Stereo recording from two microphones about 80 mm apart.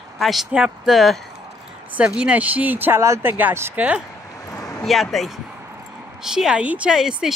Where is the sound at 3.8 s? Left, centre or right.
Centre.